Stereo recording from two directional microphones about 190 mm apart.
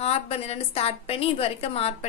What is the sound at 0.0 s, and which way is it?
A woman's voice, 35° left (ahead or behind).